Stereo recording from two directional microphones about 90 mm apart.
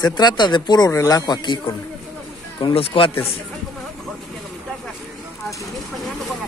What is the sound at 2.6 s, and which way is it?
Speech, 90° left.